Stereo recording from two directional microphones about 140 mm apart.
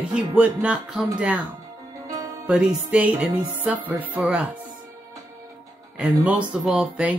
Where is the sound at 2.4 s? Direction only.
5° right (ahead or behind).